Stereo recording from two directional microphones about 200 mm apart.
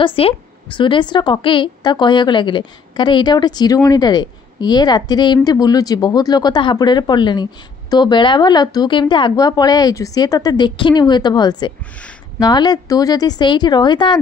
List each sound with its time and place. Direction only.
0.0 s a woman's voice: 25° left (ahead or behind)